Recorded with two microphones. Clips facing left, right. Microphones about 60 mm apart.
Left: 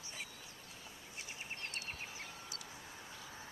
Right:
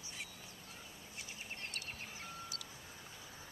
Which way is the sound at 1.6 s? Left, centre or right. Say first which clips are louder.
Left 1 dB; left.